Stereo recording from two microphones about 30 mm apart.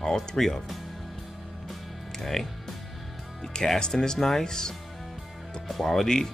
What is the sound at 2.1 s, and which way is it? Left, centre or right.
Speech, centre.